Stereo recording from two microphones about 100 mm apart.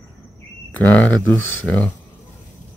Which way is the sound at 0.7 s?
15° left (ahead or behind).